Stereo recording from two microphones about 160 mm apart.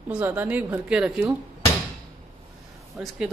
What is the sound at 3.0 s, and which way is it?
Speech, 5° right (ahead or behind).